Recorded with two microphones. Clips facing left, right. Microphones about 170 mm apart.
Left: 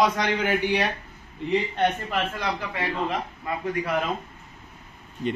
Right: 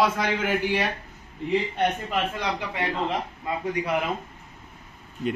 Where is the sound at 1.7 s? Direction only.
15° right (ahead or behind).